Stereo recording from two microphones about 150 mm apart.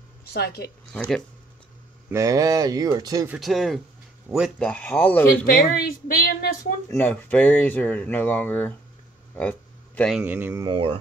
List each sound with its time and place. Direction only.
0.3 s a woman's voice: 90° left
0.9 s speech: 5° left (ahead or behind)
2.1 s speech: 20° right (ahead or behind)
3.3 s speech: centre (ahead or behind)
5.4 s a woman's voice: 75° left (ahead or behind)
6.9 s speech: 10° left (ahead or behind)
9.3 s a sound: 10° left (ahead or behind)
10.1 s speech: 10° right (ahead or behind)
10.7 s speech: 40° right (ahead or behind)